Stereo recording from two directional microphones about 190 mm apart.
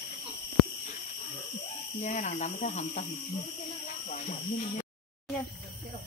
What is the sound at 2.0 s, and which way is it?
Speech, 40° left (ahead or behind).